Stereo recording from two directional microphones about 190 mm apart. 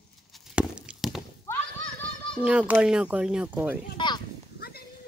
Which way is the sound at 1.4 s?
10° left (ahead or behind).